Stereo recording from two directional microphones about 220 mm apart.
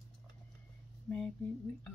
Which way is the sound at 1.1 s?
5° left (ahead or behind).